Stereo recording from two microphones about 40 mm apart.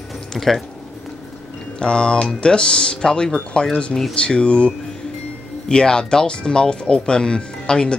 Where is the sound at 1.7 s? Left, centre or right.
Left.